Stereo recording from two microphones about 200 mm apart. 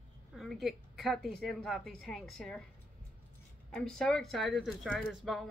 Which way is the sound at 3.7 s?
5° left (ahead or behind).